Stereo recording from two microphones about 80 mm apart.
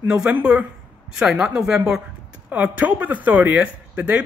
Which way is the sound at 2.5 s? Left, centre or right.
Centre.